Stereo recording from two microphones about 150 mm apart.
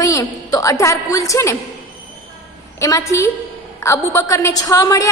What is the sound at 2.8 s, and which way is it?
A woman's voice, 20° left (ahead or behind).